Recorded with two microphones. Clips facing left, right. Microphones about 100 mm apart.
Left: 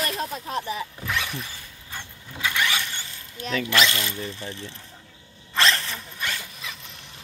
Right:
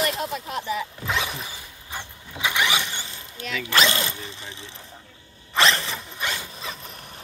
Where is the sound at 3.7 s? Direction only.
30° right (ahead or behind).